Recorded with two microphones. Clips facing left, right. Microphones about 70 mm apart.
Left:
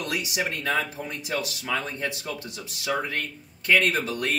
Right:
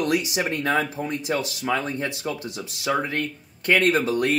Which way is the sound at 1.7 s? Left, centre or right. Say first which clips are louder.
Right 4 dB; right.